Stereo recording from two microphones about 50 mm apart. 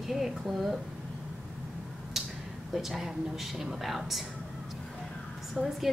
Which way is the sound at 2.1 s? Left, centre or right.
Centre.